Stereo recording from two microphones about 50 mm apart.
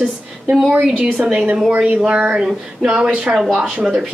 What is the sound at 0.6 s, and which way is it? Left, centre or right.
Speech, centre.